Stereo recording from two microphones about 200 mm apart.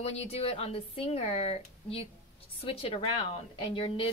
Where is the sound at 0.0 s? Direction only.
30° left (ahead or behind).